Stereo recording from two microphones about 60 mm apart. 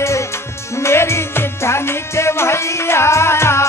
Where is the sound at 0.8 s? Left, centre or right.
Left.